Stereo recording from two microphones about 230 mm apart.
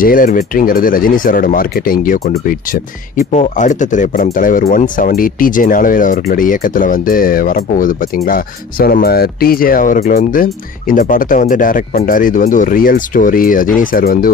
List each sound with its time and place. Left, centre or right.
0.0 s speech: left